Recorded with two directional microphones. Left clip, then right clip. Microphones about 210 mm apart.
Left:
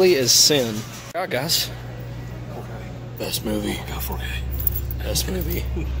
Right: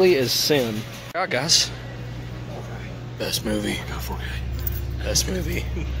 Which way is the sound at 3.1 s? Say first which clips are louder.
Right 1 dB; 5° left (ahead or behind).